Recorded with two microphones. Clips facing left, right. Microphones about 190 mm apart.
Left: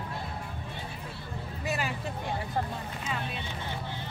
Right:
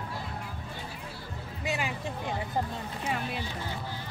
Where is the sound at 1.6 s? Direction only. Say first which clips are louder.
Even; 15° right (ahead or behind).